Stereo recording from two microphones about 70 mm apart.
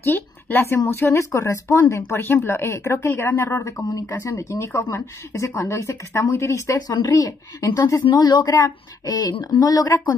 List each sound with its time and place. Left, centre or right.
0.0 s speech: left
4.1 s a woman's voice: left